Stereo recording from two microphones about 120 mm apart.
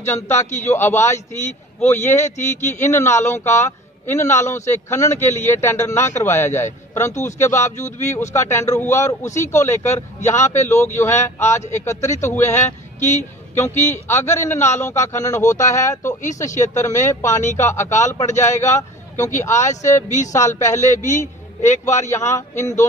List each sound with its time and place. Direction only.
0.0 s a man's voice: 20° left (ahead or behind)
16.4 s speech: 85° left
16.8 s a man's voice: 20° left (ahead or behind)
20.9 s speech: 90° left
22.1 s a man's voice: 25° left (ahead or behind)